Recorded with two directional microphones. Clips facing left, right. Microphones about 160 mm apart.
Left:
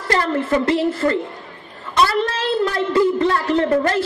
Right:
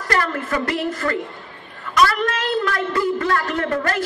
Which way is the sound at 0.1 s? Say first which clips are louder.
Left 4 dB; 25° left (ahead or behind).